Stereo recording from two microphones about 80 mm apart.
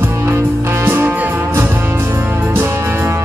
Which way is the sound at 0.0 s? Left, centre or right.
Right.